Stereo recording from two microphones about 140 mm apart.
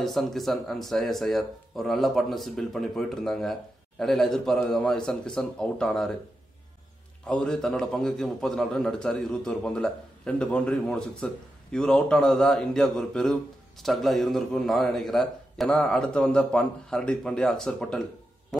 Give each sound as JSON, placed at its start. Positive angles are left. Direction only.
{"t": 0.0, "sound": "a man's voice", "side_deg": 0}
{"t": 7.2, "sound": "a man's voice", "side_deg": 5}